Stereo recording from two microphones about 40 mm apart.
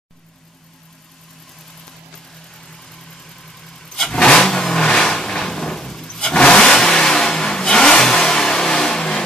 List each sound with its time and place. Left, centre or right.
2.6 s vehicle: centre